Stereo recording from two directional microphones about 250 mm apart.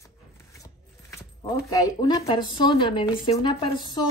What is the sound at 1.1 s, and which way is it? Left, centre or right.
A woman's voice, centre.